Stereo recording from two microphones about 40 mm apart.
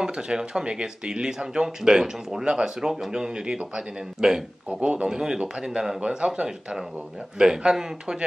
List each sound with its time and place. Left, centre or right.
0.0 s a man's voice: centre
4.6 s speech: right